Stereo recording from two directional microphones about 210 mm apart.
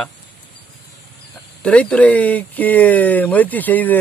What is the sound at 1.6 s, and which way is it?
Speech, 5° left (ahead or behind).